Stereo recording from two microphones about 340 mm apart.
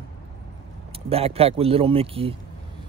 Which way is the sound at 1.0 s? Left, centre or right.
Centre.